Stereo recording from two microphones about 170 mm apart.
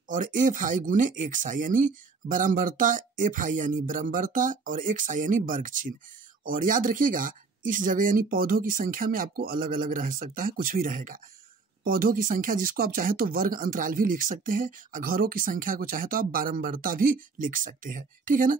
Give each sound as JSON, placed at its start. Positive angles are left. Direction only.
{"t": 0.1, "sound": "speech", "side_deg": -50}